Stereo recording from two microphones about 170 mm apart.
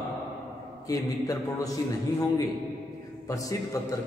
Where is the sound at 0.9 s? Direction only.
20° left (ahead or behind).